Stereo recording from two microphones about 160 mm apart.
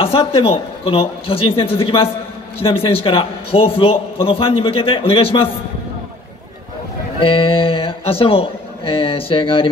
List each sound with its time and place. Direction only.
0.0 s a man's voice: 35° left (ahead or behind)
7.2 s a man's voice: 35° left (ahead or behind)